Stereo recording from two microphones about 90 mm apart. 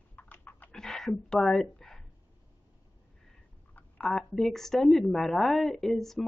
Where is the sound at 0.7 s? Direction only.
5° left (ahead or behind).